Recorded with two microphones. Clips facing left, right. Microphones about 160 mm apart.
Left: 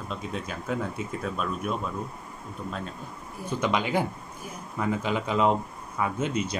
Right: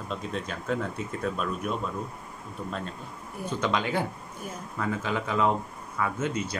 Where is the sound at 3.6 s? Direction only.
15° left (ahead or behind).